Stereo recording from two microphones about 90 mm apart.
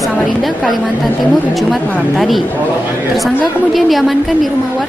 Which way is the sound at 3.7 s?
Centre (ahead or behind).